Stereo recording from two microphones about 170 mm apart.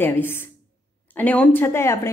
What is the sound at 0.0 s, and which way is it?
A woman's voice, 15° left (ahead or behind).